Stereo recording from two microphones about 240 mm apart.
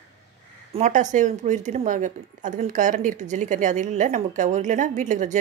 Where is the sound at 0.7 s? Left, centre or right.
Right.